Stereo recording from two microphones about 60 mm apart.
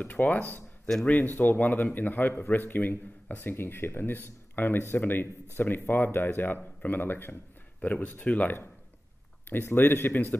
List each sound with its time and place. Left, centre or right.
0.0 s speech: left
7.8 s speech: left
9.5 s speech: left